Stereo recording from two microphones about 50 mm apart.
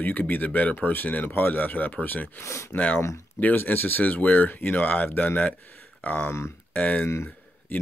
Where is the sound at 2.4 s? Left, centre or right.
Left.